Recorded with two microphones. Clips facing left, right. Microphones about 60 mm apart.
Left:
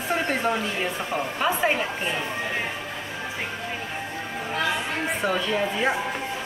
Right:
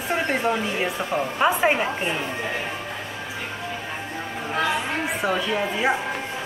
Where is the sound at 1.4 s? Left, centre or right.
Right.